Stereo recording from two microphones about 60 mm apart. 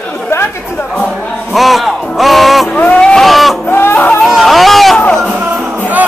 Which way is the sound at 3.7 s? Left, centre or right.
Left.